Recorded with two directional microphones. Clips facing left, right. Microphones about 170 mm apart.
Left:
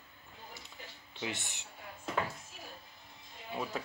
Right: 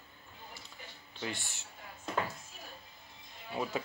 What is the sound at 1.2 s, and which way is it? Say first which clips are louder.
Speech: even; 20° left (ahead or behind).